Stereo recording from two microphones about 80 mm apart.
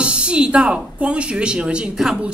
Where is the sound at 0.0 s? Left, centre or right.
Centre.